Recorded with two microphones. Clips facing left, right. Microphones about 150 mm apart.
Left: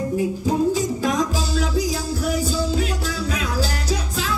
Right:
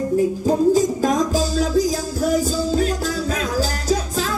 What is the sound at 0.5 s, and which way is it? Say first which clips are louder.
Music: right 4 dB; 45° right (ahead or behind).